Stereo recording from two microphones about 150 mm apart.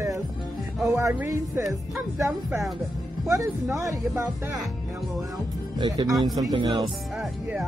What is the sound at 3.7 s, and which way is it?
Speech, 20° right (ahead or behind).